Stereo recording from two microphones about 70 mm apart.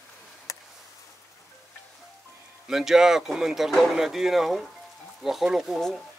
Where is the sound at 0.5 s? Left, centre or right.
Left.